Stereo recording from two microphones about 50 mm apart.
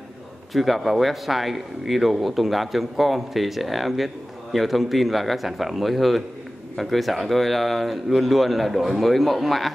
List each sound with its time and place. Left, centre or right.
0.5 s speech: centre